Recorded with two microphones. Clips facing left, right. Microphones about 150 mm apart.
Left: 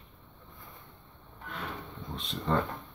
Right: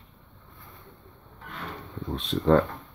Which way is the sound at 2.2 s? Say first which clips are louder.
Right 9 dB; 65° right (ahead or behind).